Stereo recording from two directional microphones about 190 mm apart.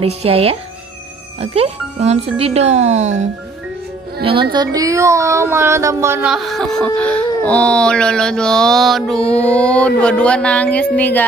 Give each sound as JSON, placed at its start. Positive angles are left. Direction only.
{"t": 0.0, "sound": "speech", "side_deg": -30}
{"t": 4.2, "sound": "speech", "side_deg": -25}
{"t": 6.3, "sound": "speech", "side_deg": 0}